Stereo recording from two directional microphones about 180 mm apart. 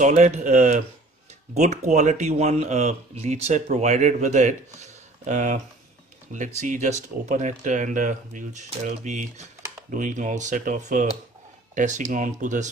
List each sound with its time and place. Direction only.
0.0 s speech: 45° right (ahead or behind)